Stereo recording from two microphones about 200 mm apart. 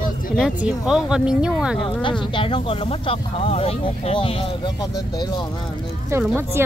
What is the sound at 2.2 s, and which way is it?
Speech, 25° left (ahead or behind).